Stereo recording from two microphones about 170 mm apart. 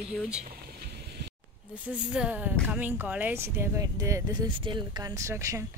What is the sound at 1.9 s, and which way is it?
Speech, 5° right (ahead or behind).